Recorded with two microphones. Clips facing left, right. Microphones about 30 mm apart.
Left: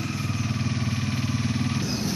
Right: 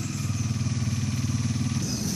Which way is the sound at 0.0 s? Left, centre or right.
Left.